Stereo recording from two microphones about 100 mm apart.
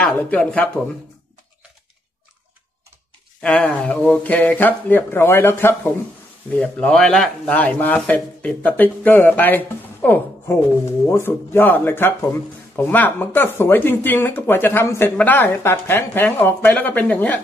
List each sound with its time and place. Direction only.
0.0 s speech: 15° left (ahead or behind)
3.3 s speech: 10° left (ahead or behind)
6.5 s speech: 10° left (ahead or behind)